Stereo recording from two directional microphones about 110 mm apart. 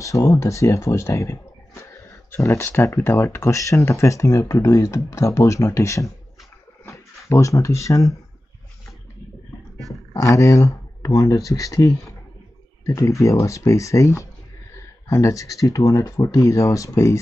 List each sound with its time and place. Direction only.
0.0 s speech: 30° left (ahead or behind)
7.2 s speech: 25° left (ahead or behind)
10.1 s speech: 30° left (ahead or behind)